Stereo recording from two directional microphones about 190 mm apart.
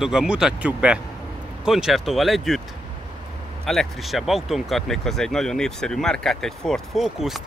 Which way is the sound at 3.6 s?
Centre (ahead or behind).